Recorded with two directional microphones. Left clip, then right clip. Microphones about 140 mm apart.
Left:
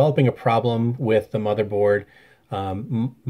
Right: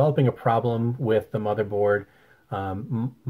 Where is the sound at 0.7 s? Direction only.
25° left (ahead or behind).